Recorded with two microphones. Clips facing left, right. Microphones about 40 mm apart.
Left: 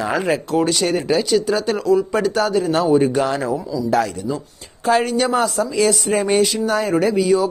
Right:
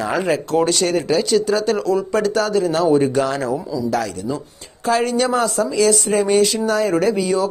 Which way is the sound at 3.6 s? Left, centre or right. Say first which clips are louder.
Even; centre.